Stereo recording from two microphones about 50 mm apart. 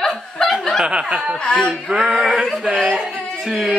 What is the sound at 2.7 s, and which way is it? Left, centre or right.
Speech, centre.